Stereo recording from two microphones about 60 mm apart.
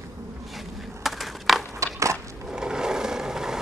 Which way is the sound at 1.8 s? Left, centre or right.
Right.